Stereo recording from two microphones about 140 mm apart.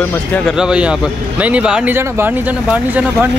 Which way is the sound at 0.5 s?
5° right (ahead or behind).